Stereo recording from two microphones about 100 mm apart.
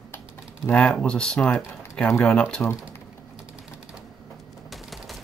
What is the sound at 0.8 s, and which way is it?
Speech, 10° left (ahead or behind).